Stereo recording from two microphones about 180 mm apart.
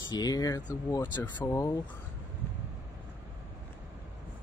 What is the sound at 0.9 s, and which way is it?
Speech, 10° left (ahead or behind).